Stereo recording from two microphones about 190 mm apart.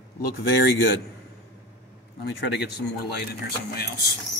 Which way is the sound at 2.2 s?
65° left (ahead or behind).